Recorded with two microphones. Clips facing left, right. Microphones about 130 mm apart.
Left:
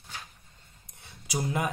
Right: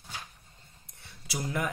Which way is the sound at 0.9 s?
20° left (ahead or behind).